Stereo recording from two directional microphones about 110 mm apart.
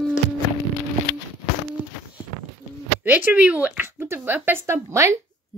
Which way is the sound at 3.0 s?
15° right (ahead or behind).